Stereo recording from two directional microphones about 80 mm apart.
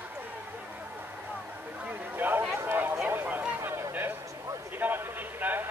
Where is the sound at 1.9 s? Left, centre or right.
Right.